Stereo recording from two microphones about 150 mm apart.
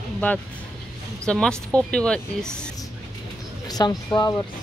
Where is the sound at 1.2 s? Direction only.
5° left (ahead or behind).